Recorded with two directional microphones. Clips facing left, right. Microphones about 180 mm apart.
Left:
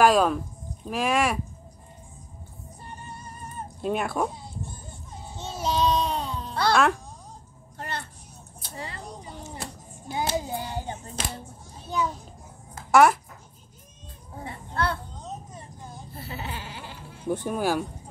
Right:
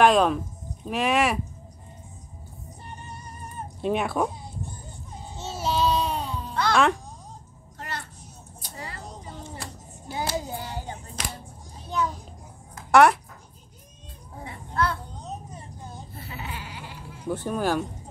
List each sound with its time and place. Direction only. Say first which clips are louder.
0.0 s speech: right 1 dB; centre (ahead or behind)
3.8 s speech: right 2 dB; centre (ahead or behind)
5.4 s child singing: even; 5° right (ahead or behind)
6.7 s speech: even; centre (ahead or behind)
8.7 s a sound: left 2 dB; 25° left (ahead or behind)
9.6 s hands: left 1 dB; 20° left (ahead or behind)
12.9 s speech: right 1 dB; centre (ahead or behind)
14.4 s a sound: right 1 dB; 30° left (ahead or behind)
16.2 s goat: left 3 dB; 30° left (ahead or behind)
17.3 s speech: even; 15° left (ahead or behind)